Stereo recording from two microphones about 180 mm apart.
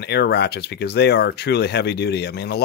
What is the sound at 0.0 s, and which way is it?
Speech, 65° left (ahead or behind).